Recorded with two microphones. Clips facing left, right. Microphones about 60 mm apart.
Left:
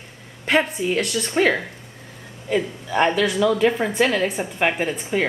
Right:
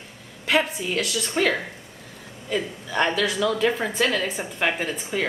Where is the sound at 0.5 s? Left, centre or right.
Centre.